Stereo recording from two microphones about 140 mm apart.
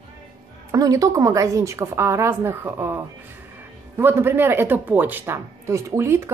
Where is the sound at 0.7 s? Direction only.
25° right (ahead or behind).